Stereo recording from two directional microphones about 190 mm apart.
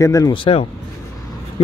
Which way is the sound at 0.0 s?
15° left (ahead or behind).